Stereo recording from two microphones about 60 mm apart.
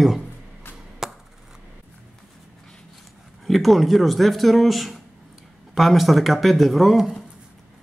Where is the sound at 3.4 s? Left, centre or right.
Centre.